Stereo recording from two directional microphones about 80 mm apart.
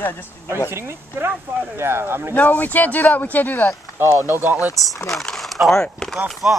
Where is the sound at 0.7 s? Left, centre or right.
Right.